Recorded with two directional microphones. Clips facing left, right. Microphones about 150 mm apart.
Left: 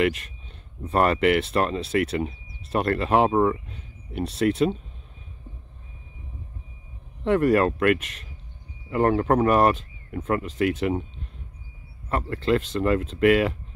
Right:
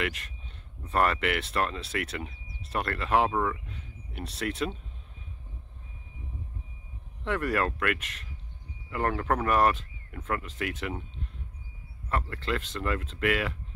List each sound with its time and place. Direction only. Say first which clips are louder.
0.0 s speech: left 10 dB; 20° left (ahead or behind)
7.2 s speech: left 9 dB; 25° left (ahead or behind)
12.1 s speech: left 8 dB; 20° left (ahead or behind)